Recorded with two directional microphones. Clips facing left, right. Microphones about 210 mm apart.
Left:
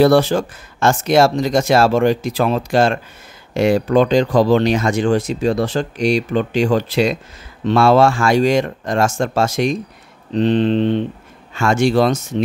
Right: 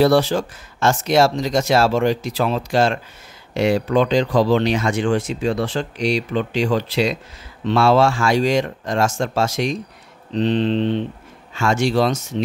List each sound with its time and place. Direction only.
0.0 s speech: 50° left (ahead or behind)